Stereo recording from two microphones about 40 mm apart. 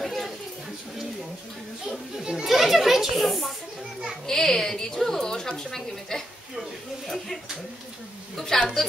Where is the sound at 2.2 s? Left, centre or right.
Centre.